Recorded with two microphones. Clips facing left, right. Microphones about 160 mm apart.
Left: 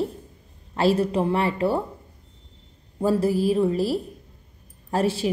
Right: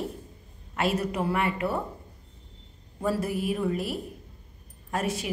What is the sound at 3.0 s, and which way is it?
A woman's voice, 30° left (ahead or behind).